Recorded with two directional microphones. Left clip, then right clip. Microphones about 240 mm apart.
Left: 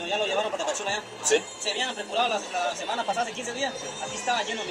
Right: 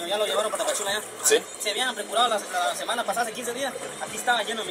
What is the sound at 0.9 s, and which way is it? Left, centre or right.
Speech, centre.